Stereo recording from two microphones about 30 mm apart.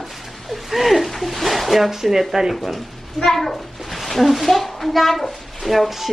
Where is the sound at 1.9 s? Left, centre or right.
Centre.